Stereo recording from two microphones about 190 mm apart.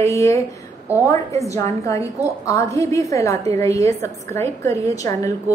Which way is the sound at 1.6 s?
15° left (ahead or behind).